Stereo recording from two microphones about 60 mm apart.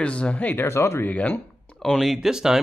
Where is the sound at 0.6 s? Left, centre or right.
Left.